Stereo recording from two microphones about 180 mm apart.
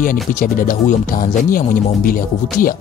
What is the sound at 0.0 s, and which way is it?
Speech, 50° left (ahead or behind).